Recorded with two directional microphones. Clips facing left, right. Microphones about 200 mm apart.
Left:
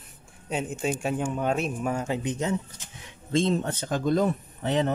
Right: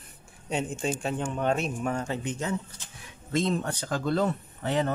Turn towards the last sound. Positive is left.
turn(degrees=20)  # may be behind; listen again after turning